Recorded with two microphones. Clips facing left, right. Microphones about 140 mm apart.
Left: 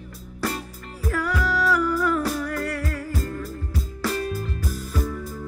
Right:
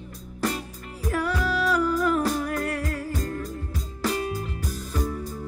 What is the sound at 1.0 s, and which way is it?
Music, 20° right (ahead or behind).